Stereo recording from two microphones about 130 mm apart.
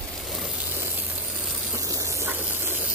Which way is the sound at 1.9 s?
20° right (ahead or behind).